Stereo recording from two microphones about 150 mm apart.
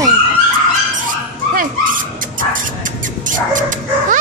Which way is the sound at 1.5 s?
65° right (ahead or behind).